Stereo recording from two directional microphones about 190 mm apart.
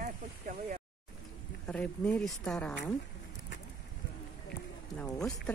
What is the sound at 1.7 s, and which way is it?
Speech, 5° left (ahead or behind).